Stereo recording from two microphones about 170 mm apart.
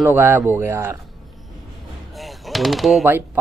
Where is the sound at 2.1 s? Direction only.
Centre (ahead or behind).